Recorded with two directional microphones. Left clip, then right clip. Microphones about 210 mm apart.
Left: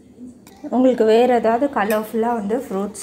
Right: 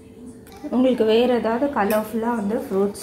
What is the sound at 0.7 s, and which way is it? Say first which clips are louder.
Speech: left 3 dB; 25° left (ahead or behind).